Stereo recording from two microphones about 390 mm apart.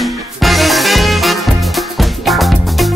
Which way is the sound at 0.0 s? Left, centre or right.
Centre.